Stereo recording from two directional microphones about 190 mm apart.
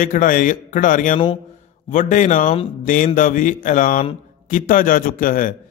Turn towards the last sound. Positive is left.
turn(degrees=45)  # may be behind; listen again after turning